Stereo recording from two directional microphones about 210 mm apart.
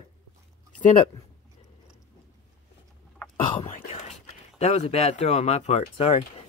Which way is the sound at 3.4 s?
25° left (ahead or behind).